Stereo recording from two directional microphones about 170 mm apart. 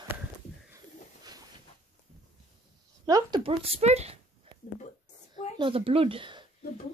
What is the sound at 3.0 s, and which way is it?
Speech, 25° right (ahead or behind).